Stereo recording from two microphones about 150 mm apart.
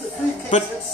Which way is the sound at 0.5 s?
55° left (ahead or behind).